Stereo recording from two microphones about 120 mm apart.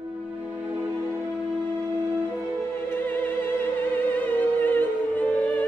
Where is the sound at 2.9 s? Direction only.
15° left (ahead or behind).